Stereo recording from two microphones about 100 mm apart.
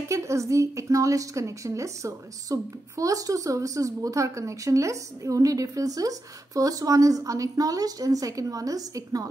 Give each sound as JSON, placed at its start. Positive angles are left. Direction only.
{"t": 0.1, "sound": "a woman's voice", "side_deg": -30}